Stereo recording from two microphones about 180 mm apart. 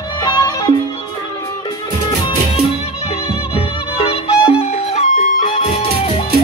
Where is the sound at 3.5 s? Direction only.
30° left (ahead or behind).